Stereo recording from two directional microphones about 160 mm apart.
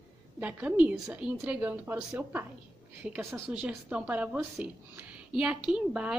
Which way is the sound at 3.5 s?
5° right (ahead or behind).